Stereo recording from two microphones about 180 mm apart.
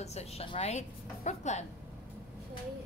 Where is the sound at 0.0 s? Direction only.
35° left (ahead or behind).